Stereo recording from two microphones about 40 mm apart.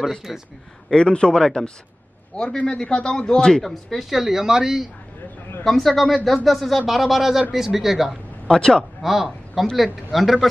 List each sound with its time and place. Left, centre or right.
0.3 s speech: centre
0.8 s speech: left
2.5 s speech: left
2.8 s speech: left
4.1 s speech: centre
5.6 s speech: centre
8.5 s speech: centre
9.0 s a man's voice: centre